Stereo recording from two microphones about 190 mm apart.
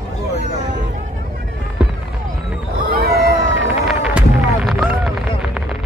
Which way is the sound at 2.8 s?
50° right (ahead or behind).